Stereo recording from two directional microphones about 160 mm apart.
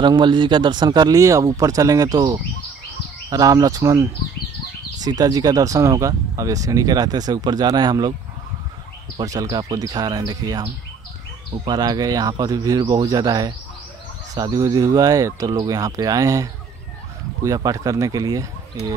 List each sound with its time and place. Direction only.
0.0 s speech: 30° right (ahead or behind)
9.1 s speech: 20° right (ahead or behind)